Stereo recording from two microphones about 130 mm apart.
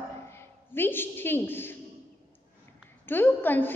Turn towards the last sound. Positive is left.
turn(degrees=15)  # may be behind; listen again after turning